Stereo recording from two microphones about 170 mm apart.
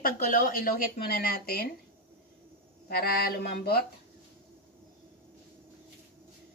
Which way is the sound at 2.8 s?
65° left (ahead or behind).